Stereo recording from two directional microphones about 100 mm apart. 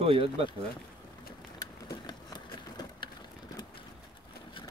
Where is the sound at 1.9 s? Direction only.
45° left (ahead or behind).